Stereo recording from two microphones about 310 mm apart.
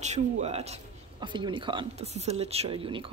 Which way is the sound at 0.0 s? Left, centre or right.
Right.